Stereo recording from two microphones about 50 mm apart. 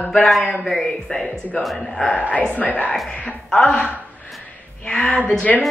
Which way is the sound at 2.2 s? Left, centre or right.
Left.